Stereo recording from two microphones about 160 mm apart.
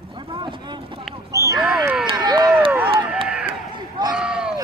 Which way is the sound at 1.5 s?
Centre (ahead or behind).